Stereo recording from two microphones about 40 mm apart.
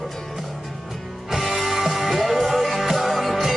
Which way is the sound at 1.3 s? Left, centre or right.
Centre.